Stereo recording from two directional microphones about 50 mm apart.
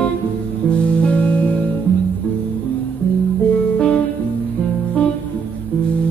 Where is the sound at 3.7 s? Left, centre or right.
Left.